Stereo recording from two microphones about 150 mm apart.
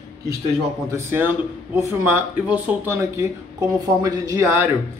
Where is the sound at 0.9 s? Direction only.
15° right (ahead or behind).